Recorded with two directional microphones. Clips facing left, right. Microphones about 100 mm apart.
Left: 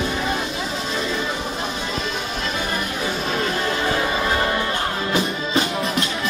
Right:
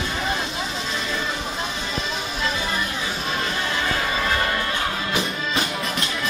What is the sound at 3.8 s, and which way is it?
Music, 30° left (ahead or behind).